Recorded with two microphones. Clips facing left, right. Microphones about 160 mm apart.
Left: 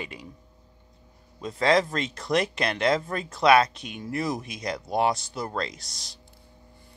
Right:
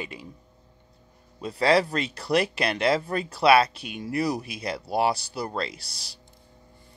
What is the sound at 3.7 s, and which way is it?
Speech, 5° right (ahead or behind).